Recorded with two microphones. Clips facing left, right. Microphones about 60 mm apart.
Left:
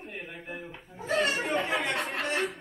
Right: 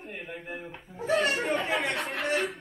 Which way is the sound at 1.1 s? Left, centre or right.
Centre.